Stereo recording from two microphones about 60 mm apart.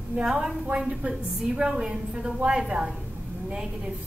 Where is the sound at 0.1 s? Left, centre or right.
Centre.